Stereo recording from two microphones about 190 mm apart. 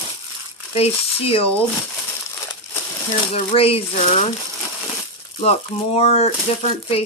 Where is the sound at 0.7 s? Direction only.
30° left (ahead or behind).